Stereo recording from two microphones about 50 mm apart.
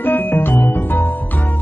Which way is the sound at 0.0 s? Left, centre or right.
Left.